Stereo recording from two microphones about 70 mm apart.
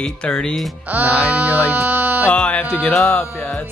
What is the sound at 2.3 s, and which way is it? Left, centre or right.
Speech, centre.